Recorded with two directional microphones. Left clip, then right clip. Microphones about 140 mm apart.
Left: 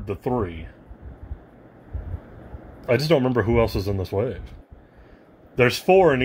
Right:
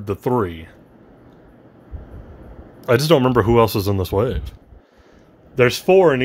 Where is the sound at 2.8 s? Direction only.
50° right (ahead or behind).